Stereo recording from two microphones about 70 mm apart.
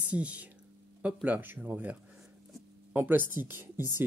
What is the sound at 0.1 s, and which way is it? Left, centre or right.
Speech, centre.